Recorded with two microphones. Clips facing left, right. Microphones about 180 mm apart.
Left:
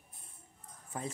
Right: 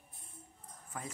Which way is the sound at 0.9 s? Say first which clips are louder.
Left 4 dB; 30° left (ahead or behind).